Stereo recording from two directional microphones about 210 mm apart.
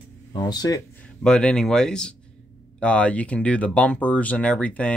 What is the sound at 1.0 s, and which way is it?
Speech, 5° left (ahead or behind).